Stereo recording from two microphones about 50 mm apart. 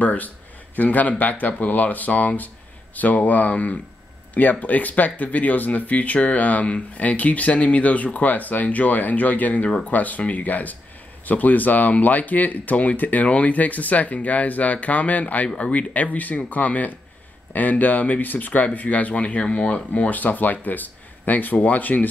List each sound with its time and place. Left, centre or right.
0.0 s speech: left